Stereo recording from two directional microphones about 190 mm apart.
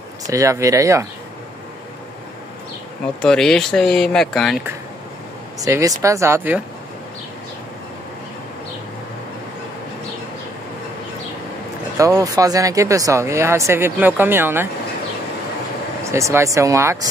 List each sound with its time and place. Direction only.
0.3 s speech: 15° right (ahead or behind)
3.2 s speech: 5° left (ahead or behind)
5.6 s speech: 15° right (ahead or behind)
12.0 s speech: 15° right (ahead or behind)
16.0 s speech: 15° right (ahead or behind)